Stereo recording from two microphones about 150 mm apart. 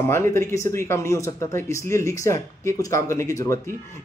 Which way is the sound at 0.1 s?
20° left (ahead or behind).